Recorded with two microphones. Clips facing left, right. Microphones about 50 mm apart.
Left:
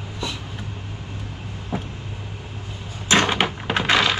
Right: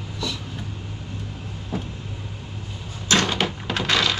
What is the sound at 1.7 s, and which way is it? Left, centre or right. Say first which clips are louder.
Vehicle: left 1 dB; left.